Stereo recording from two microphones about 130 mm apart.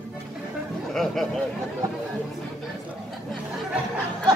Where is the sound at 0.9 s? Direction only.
Centre (ahead or behind).